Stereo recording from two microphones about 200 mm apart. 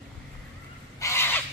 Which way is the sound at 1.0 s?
10° left (ahead or behind).